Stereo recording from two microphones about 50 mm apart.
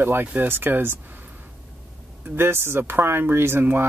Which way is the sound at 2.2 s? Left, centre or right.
Right.